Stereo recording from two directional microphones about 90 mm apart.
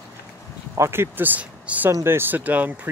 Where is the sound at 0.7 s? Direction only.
30° right (ahead or behind).